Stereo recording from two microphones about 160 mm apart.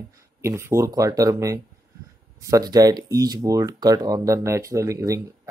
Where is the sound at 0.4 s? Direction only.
15° right (ahead or behind).